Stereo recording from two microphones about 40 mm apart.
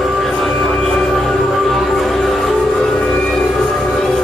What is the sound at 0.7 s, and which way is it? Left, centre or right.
Music, centre.